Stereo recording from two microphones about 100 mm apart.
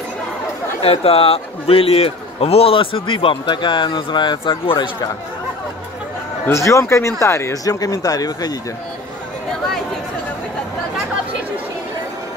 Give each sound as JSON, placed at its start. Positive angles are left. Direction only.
{"t": 0.8, "sound": "a man's voice", "side_deg": 75}
{"t": 6.4, "sound": "speech", "side_deg": 30}